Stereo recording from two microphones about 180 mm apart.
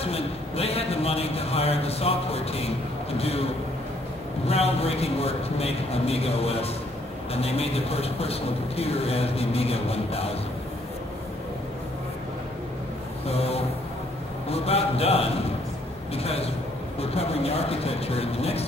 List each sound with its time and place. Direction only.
0.0 s a man's voice: 35° left (ahead or behind)
4.5 s a man's voice: 35° left (ahead or behind)
13.3 s a sound: 35° left (ahead or behind)
16.2 s a man's voice: 35° left (ahead or behind)